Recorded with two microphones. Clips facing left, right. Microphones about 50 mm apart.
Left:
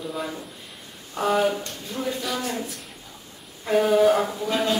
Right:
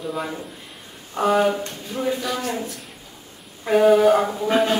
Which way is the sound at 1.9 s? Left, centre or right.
Centre.